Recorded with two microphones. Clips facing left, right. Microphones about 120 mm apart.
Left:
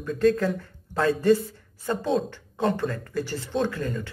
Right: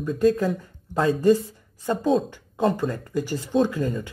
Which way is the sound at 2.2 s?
10° right (ahead or behind).